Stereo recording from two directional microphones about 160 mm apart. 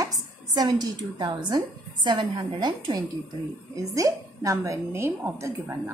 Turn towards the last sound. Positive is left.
turn(degrees=-15)  # may be behind; listen again after turning